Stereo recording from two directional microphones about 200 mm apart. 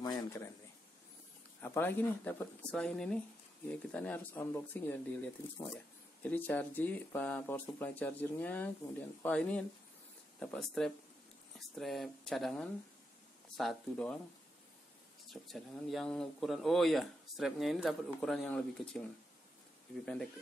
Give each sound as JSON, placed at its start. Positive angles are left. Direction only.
{"t": 0.0, "sound": "a sound", "side_deg": 15}
{"t": 1.6, "sound": "speech", "side_deg": 10}
{"t": 15.2, "sound": "speech", "side_deg": 0}